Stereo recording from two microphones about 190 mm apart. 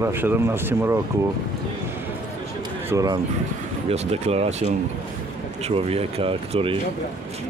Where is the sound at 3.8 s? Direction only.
35° right (ahead or behind).